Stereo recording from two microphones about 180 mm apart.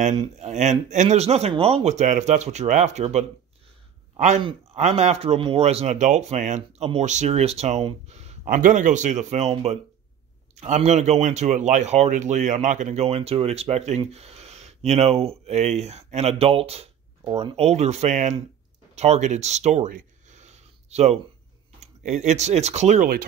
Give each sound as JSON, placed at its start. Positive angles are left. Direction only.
{"t": 0.4, "sound": "speech", "side_deg": -40}
{"t": 4.4, "sound": "speech", "side_deg": -35}